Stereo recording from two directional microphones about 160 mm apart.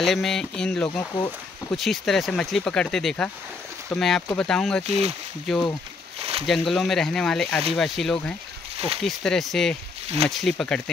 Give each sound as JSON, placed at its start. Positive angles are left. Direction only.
{"t": 0.0, "sound": "speech", "side_deg": 0}
{"t": 4.8, "sound": "speech", "side_deg": -40}
{"t": 6.1, "sound": "a sound", "side_deg": -35}
{"t": 6.4, "sound": "speech", "side_deg": 0}
{"t": 8.7, "sound": "a sound", "side_deg": -35}
{"t": 9.0, "sound": "speech", "side_deg": 0}
{"t": 10.0, "sound": "speech", "side_deg": -40}
{"t": 10.3, "sound": "speech", "side_deg": 0}